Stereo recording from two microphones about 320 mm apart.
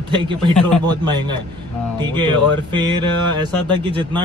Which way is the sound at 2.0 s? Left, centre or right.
Centre.